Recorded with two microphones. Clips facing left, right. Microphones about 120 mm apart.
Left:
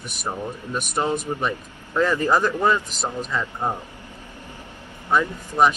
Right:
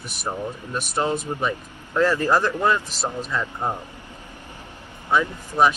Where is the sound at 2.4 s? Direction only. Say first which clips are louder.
Left 1 dB; 10° left (ahead or behind).